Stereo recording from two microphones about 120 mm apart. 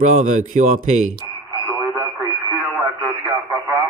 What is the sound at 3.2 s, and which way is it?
Radio, 10° right (ahead or behind).